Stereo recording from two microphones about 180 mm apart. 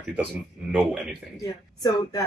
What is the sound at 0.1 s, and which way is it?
Speech, 5° right (ahead or behind).